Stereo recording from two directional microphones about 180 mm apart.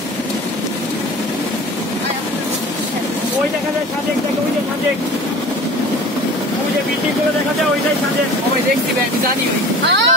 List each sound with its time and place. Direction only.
9.8 s speech: 80° right